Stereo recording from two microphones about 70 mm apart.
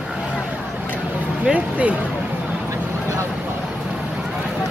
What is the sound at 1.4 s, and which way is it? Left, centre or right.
Speech, centre.